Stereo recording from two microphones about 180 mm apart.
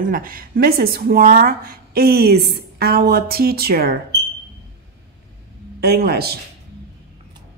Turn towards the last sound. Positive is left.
turn(degrees=-60)  # may be behind; listen again after turning